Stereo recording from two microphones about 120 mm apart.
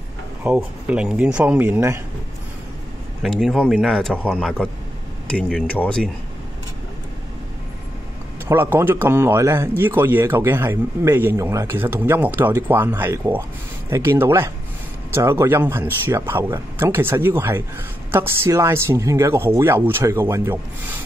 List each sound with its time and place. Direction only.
0.4 s speech: 10° right (ahead or behind)
3.2 s speech: centre (ahead or behind)
8.5 s a man's voice: 20° right (ahead or behind)